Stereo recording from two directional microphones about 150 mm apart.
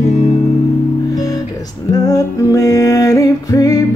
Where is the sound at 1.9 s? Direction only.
25° left (ahead or behind).